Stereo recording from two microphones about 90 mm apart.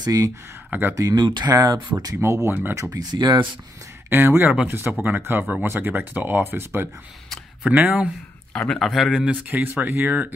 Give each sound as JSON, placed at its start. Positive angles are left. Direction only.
{"t": 0.0, "sound": "speech", "side_deg": -45}
{"t": 0.7, "sound": "speech", "side_deg": -20}
{"t": 1.1, "sound": "speech", "side_deg": -55}
{"t": 2.2, "sound": "speech", "side_deg": -35}
{"t": 4.1, "sound": "speech", "side_deg": -25}
{"t": 8.5, "sound": "speech", "side_deg": 5}